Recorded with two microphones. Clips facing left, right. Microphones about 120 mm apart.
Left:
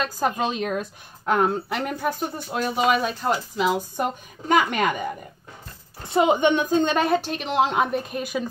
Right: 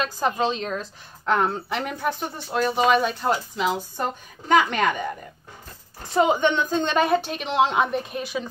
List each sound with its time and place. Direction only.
0.0 s a woman's voice: 5° left (ahead or behind)
8.2 s speech: 45° left (ahead or behind)